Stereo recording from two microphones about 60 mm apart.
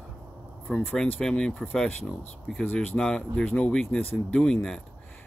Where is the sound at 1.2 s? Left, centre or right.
Centre.